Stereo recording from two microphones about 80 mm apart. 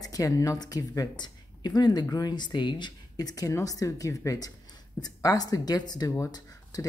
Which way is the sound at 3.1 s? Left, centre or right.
Left.